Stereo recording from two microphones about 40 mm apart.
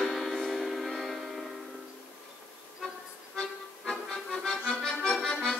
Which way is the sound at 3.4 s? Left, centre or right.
Centre.